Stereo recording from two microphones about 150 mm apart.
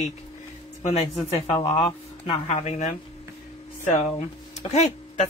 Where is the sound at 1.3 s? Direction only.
40° left (ahead or behind).